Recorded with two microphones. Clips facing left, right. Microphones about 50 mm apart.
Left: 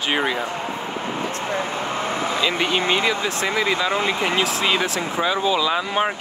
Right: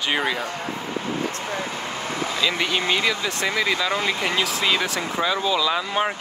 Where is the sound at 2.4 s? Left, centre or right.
Left.